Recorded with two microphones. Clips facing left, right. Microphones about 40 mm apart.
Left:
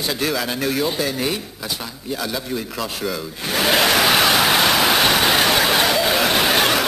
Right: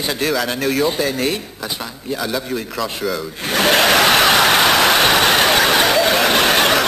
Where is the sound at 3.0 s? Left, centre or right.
Centre.